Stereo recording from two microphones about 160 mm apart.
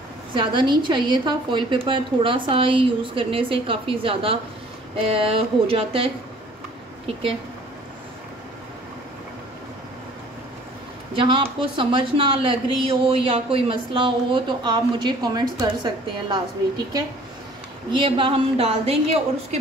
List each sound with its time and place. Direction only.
0.3 s speech: 30° right (ahead or behind)
11.1 s speech: 30° right (ahead or behind)